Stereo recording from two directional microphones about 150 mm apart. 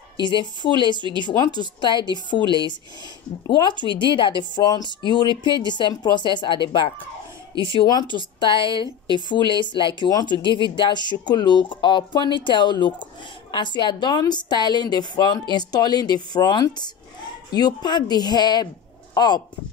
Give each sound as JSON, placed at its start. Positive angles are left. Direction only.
{"t": 0.2, "sound": "a woman's voice", "side_deg": 30}
{"t": 3.4, "sound": "speech", "side_deg": 30}
{"t": 8.8, "sound": "speech", "side_deg": -30}
{"t": 9.3, "sound": "a woman's voice", "side_deg": 30}